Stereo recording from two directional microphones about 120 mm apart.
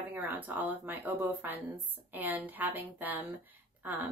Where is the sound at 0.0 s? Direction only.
15° right (ahead or behind).